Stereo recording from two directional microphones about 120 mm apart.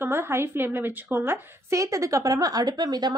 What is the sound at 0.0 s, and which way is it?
A woman's voice, 20° right (ahead or behind).